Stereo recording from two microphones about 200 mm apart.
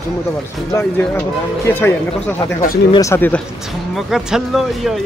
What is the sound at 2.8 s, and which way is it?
Speech, 15° left (ahead or behind).